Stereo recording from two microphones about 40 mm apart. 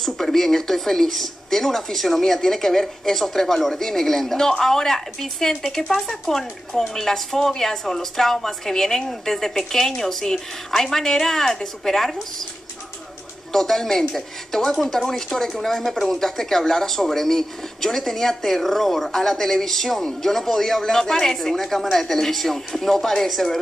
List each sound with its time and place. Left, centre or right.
0.0 s speech: centre
13.5 s speech: centre